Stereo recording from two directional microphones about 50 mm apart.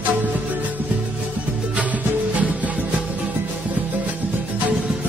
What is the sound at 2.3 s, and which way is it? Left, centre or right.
Music, right.